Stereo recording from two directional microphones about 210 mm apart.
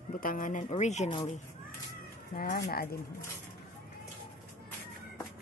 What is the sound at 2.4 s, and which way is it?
Speech, 45° left (ahead or behind).